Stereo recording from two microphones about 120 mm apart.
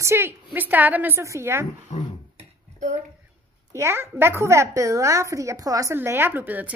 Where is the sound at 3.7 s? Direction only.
20° right (ahead or behind).